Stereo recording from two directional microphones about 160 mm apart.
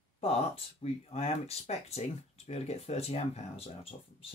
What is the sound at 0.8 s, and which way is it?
Speech, 40° left (ahead or behind).